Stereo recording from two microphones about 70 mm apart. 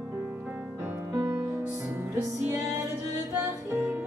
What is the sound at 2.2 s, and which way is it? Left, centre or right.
Music, right.